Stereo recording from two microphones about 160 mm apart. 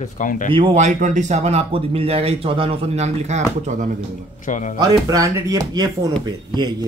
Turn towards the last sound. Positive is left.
turn(degrees=-25)  # may be behind; listen again after turning